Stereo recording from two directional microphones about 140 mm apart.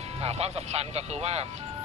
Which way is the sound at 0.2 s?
45° right (ahead or behind).